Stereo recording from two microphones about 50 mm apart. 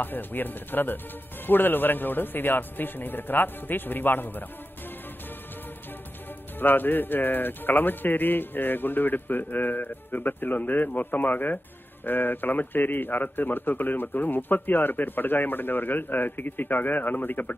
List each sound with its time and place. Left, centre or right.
0.0 s a man's voice: left
6.6 s a man's voice: left